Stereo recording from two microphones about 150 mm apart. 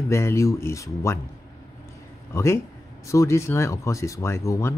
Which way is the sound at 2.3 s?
20° left (ahead or behind).